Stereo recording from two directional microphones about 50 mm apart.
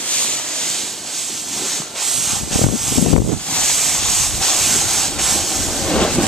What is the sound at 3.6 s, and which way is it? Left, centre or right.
Sanding, centre.